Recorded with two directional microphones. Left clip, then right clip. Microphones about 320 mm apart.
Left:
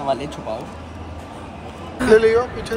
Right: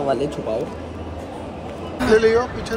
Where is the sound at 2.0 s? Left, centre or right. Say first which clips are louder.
Left 2 dB; centre.